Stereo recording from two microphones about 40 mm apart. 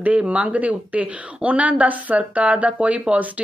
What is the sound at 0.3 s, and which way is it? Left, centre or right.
A woman's voice, right.